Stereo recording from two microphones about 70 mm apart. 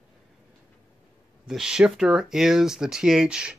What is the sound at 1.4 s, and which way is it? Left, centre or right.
Speech, centre.